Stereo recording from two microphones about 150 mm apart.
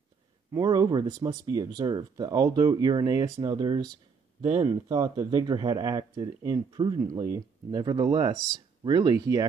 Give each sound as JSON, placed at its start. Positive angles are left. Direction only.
{"t": 0.5, "sound": "speech", "side_deg": -25}